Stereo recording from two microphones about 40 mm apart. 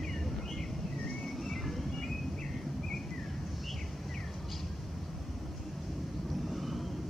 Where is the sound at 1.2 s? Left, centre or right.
Centre.